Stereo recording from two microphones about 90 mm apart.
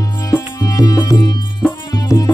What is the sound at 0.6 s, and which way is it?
Music, 45° left (ahead or behind).